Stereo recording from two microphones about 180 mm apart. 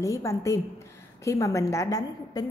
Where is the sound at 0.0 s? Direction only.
15° left (ahead or behind).